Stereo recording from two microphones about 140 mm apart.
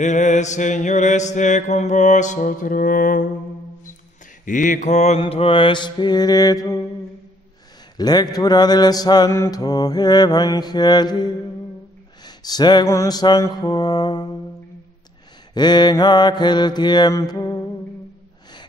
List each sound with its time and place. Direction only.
0.0 s mantra: 60° left (ahead or behind); by 3.3 s 75° left (ahead or behind)
4.5 s mantra: 65° left (ahead or behind); by 6.8 s 25° left (ahead or behind)
8.0 s mantra: 30° left (ahead or behind)
12.3 s speech: 30° left (ahead or behind)
12.8 s mantra: 20° left (ahead or behind)
15.5 s mantra: 30° left (ahead or behind)
17.2 s music: 25° left (ahead or behind)